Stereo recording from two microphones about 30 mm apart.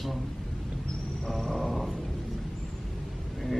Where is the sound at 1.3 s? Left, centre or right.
Centre.